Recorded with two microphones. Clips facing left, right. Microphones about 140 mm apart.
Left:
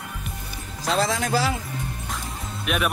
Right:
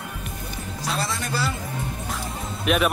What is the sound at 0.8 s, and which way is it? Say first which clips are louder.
Speech: left 6 dB; 90° left.